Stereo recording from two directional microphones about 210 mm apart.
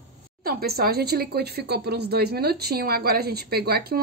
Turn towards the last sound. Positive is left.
turn(degrees=-45)  # may be behind; listen again after turning